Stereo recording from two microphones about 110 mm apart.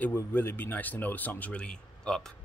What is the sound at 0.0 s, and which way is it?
Speech, 15° left (ahead or behind).